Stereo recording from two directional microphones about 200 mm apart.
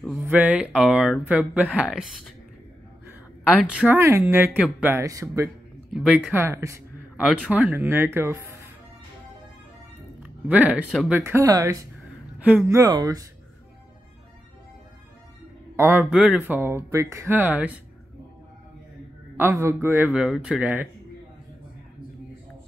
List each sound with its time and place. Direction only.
0.2 s speech: 10° right (ahead or behind)
10.2 s speech: 10° right (ahead or behind)
15.7 s speech: 10° right (ahead or behind)
19.3 s speech: 10° right (ahead or behind)